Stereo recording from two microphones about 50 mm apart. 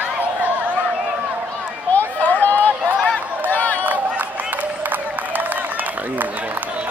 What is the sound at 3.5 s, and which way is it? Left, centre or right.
Run, left.